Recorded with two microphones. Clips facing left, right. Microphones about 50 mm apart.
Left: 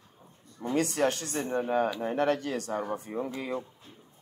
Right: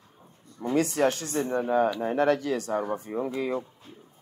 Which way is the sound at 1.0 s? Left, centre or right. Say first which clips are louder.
Right 3 dB; right.